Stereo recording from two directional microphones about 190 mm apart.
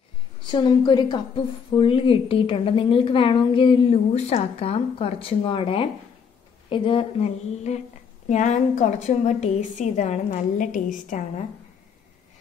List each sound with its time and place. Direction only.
0.5 s a woman's voice: 25° left (ahead or behind); by 11.4 s 45° left (ahead or behind)